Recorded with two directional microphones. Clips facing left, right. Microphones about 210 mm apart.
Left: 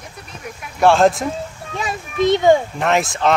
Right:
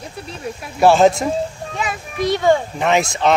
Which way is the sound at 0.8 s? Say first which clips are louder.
Right 1 dB; 5° right (ahead or behind).